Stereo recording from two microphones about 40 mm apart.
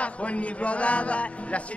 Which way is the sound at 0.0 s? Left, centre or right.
Left.